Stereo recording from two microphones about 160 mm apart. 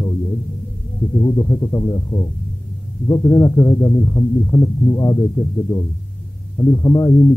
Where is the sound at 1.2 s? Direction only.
20° left (ahead or behind).